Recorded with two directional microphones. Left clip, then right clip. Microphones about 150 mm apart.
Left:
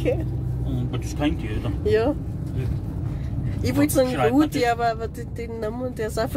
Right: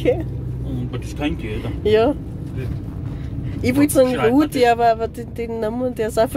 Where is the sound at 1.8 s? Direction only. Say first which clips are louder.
Right 5 dB; 40° right (ahead or behind).